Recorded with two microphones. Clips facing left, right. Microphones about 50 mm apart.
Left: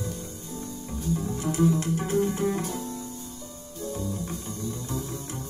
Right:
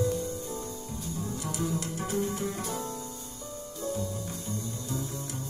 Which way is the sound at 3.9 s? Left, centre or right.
Left.